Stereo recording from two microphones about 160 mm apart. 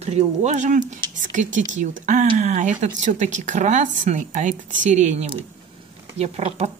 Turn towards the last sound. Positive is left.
turn(degrees=-40)  # may be behind; listen again after turning